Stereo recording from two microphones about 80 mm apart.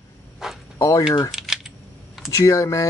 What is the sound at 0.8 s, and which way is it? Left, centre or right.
Speech, left.